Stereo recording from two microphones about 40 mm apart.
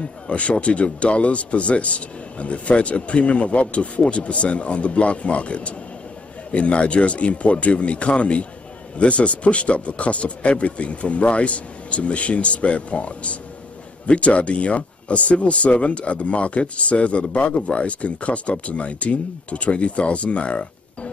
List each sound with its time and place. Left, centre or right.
0.3 s speech: left